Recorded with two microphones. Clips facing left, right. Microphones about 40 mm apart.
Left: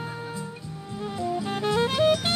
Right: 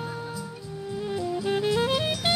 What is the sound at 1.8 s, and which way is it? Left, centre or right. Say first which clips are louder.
Music: left 4 dB; centre.